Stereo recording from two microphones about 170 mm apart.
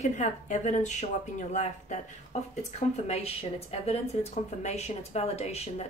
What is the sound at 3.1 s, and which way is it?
A woman's voice, 35° left (ahead or behind).